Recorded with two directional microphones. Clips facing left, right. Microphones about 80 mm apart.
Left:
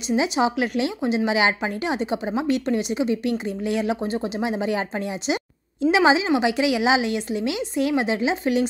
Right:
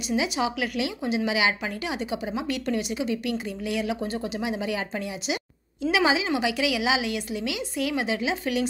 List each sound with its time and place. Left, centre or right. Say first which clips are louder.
0.1 s speech: left 5 dB; left